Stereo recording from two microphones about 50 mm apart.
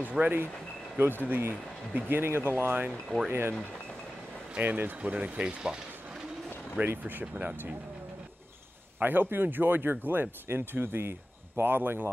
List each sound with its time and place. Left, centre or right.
0.2 s speech: right
4.6 s speech: right
5.1 s speech: right
6.9 s speech: right
9.0 s speech: right